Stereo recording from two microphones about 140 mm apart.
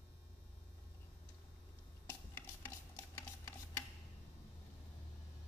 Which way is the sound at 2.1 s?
15° left (ahead or behind).